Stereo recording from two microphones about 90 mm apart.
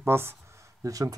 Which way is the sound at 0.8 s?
40° right (ahead or behind).